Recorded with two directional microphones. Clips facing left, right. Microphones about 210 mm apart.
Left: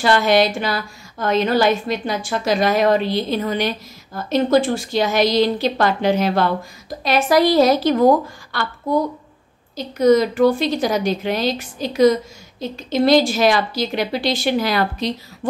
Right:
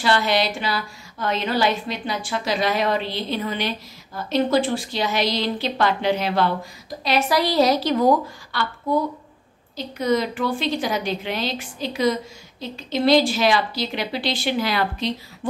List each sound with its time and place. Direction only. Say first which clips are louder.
0.0 s a woman's voice: left 5 dB; 50° left (ahead or behind)
9.9 s a woman's voice: left 8 dB; 40° left (ahead or behind)